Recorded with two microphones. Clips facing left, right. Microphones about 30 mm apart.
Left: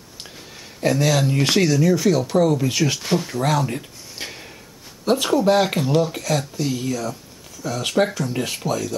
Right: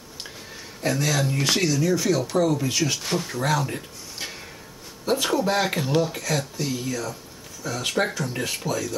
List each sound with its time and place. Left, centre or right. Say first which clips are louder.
0.7 s speech: left 5 dB; centre
5.6 s speech: left 4 dB; centre